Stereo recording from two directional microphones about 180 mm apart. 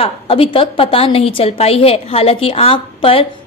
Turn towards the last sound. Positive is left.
turn(degrees=30)  # may be behind; listen again after turning